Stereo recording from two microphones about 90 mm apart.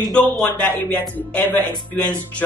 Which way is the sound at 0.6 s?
20° left (ahead or behind).